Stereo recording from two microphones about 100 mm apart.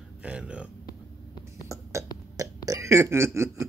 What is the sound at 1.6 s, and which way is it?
Burping, 30° right (ahead or behind).